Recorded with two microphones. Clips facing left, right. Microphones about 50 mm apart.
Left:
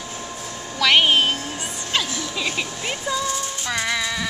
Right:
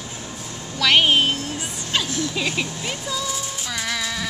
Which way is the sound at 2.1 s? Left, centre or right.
Left.